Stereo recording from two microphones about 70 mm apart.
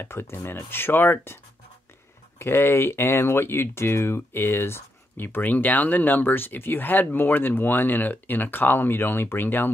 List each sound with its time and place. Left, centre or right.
0.0 s speech: left